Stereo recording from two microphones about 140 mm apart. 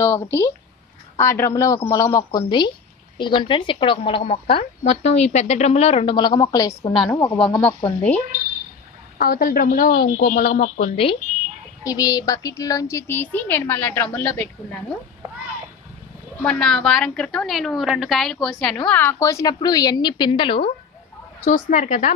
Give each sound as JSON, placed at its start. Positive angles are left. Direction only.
{"t": 0.0, "sound": "a woman's voice", "side_deg": 20}
{"t": 6.1, "sound": "a woman's voice", "side_deg": 30}
{"t": 7.6, "sound": "a child's voice", "side_deg": 10}
{"t": 9.2, "sound": "speech", "side_deg": 85}
{"t": 11.8, "sound": "a child's voice", "side_deg": 25}
{"t": 16.4, "sound": "a woman's voice", "side_deg": 5}
{"t": 18.9, "sound": "a woman's voice", "side_deg": 15}
{"t": 21.5, "sound": "speech", "side_deg": 65}